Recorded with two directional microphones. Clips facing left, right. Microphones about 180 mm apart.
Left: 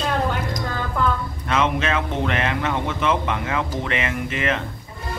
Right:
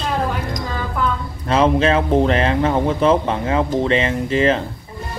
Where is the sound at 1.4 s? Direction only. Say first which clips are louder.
Right 7 dB; 30° right (ahead or behind).